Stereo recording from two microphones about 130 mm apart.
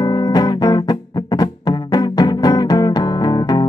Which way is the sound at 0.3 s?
30° left (ahead or behind).